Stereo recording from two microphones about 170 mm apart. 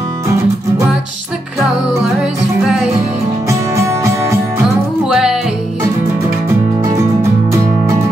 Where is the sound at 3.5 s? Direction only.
15° right (ahead or behind).